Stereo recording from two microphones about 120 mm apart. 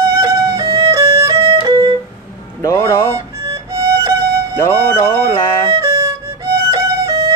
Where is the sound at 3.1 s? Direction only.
25° right (ahead or behind).